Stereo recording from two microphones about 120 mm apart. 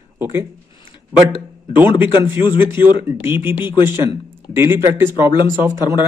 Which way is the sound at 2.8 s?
20° right (ahead or behind).